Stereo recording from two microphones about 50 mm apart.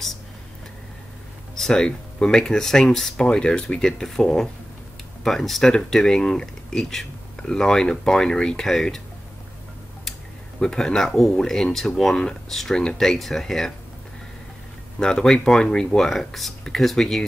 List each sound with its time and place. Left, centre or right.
1.5 s speech: centre
10.6 s speech: centre
15.0 s speech: centre